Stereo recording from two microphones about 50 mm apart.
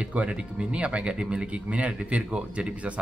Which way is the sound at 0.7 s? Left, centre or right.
Right.